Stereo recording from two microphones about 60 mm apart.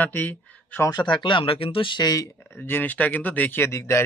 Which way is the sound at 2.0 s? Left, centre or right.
Left.